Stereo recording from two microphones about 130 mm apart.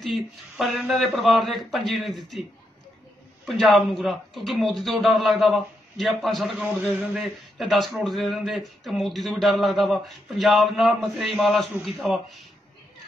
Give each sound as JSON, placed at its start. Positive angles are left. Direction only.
{"t": 0.0, "sound": "speech", "side_deg": 0}
{"t": 3.4, "sound": "speech", "side_deg": 0}